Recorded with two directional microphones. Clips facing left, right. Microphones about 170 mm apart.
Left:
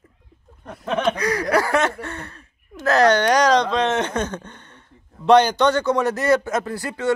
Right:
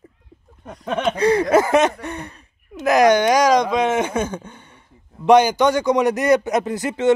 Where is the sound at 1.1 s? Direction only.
25° right (ahead or behind).